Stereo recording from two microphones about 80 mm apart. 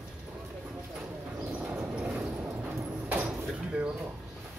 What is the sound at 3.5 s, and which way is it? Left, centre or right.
Drawer open or close, centre.